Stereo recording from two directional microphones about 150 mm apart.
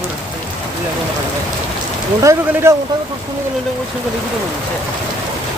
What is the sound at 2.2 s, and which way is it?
Speech, 20° right (ahead or behind).